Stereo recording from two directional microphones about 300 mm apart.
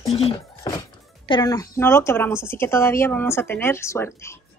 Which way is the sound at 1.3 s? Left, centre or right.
Centre.